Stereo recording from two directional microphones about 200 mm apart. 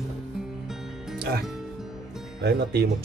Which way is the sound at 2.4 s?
55° right (ahead or behind).